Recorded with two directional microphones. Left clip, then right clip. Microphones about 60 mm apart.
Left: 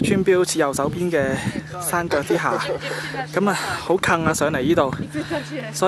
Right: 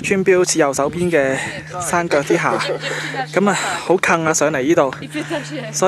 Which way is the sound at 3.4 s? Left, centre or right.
Centre.